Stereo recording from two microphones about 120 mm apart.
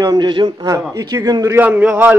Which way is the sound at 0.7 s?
30° right (ahead or behind).